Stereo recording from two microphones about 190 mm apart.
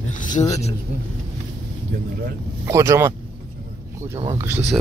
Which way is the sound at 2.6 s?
15° right (ahead or behind).